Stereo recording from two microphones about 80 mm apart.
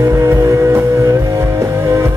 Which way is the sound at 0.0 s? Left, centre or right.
Right.